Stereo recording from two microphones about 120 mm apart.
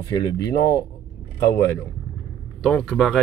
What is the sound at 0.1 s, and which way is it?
Speech, 30° left (ahead or behind).